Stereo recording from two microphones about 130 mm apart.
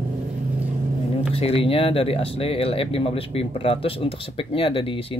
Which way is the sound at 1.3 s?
50° left (ahead or behind).